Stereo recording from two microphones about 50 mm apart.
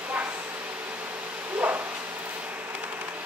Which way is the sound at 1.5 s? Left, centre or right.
Right.